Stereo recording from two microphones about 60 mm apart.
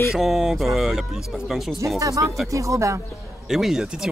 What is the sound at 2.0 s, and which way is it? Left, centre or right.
Speech, right.